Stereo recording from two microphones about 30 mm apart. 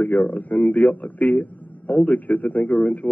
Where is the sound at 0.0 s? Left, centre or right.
Left.